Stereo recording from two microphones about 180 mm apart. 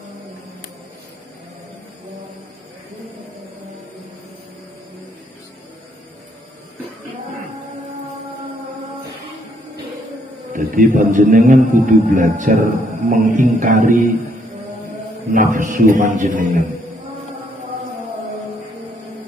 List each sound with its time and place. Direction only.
10.5 s a man's voice: 45° right (ahead or behind)
15.5 s a man's voice: 50° right (ahead or behind)